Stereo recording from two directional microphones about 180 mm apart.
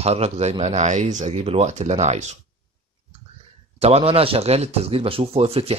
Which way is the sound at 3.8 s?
35° right (ahead or behind).